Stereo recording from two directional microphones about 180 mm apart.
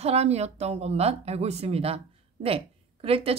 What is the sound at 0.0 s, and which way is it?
A woman's voice, 35° right (ahead or behind).